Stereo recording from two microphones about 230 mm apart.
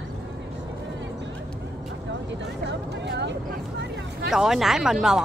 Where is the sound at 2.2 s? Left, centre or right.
Right.